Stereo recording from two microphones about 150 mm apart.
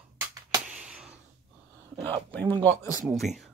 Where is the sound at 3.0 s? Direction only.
Centre (ahead or behind).